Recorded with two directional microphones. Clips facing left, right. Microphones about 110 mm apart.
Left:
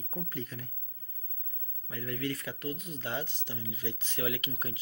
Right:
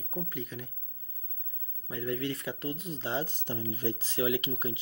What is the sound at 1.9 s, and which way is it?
Speech, 25° right (ahead or behind).